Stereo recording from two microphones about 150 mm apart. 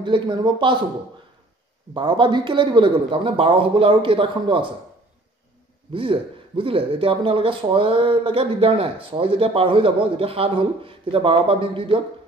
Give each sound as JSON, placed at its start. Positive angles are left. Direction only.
{"t": 0.0, "sound": "speech", "side_deg": -30}
{"t": 2.0, "sound": "speech", "side_deg": -30}
{"t": 5.9, "sound": "speech", "side_deg": -35}